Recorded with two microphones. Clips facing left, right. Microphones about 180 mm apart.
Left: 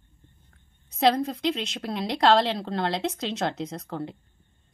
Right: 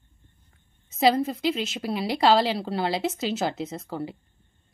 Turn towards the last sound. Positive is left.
turn(degrees=-5)  # may be behind; listen again after turning